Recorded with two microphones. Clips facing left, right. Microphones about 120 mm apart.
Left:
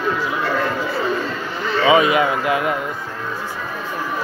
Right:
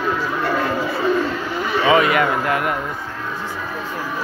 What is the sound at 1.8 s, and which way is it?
Speech, 20° left (ahead or behind).